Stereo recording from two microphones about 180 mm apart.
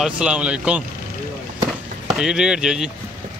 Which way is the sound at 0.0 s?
5° right (ahead or behind).